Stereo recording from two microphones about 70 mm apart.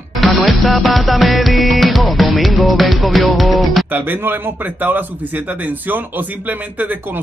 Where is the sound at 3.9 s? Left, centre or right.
Right.